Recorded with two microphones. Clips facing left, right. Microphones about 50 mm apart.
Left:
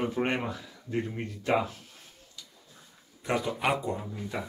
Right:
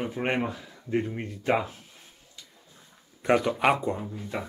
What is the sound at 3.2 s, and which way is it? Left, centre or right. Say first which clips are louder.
Speech: right 6 dB; right.